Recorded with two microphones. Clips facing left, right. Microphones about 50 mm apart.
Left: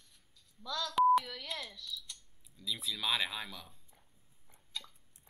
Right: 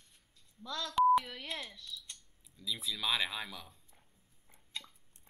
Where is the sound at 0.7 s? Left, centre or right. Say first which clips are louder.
Left 2 dB; right.